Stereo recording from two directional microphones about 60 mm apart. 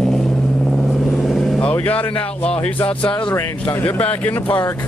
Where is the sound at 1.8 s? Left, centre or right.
Left.